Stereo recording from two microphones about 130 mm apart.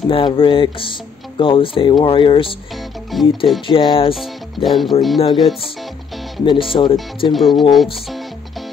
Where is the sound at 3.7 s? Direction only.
45° left (ahead or behind).